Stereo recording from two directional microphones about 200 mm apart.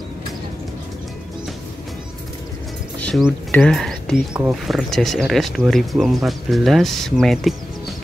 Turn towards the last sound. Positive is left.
turn(degrees=0)  # may be behind; listen again after turning